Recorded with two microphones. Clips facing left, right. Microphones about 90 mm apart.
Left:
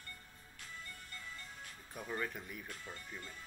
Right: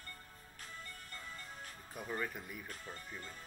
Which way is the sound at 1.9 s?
Centre (ahead or behind).